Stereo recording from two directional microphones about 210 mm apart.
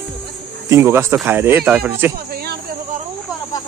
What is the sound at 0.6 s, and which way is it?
Speech, 15° right (ahead or behind).